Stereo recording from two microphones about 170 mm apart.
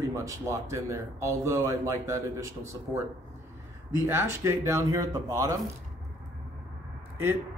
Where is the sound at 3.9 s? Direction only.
15° right (ahead or behind).